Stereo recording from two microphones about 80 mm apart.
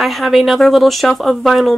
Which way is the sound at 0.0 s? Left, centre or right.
Centre.